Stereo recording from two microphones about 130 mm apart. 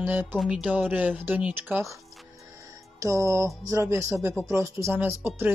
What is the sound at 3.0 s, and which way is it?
Speech, 25° right (ahead or behind).